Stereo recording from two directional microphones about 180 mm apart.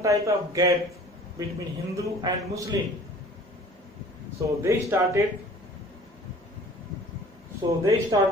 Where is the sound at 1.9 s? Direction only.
20° right (ahead or behind).